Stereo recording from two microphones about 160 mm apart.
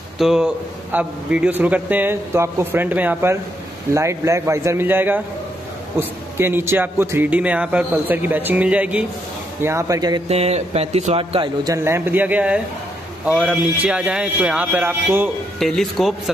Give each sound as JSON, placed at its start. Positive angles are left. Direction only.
{"t": 0.2, "sound": "a man's voice", "side_deg": -5}
{"t": 10.2, "sound": "speech", "side_deg": -40}
{"t": 15.6, "sound": "a man's voice", "side_deg": 0}